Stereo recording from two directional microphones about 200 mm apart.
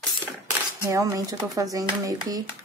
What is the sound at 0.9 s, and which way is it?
Speech, 15° right (ahead or behind).